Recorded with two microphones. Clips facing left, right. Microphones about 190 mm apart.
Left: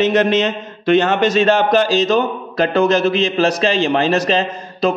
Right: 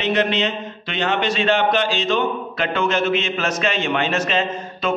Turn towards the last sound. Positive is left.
turn(degrees=35)  # may be behind; listen again after turning